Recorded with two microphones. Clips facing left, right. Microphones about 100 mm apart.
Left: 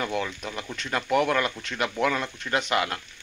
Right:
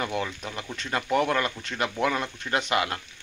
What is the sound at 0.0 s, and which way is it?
Speech, 5° right (ahead or behind).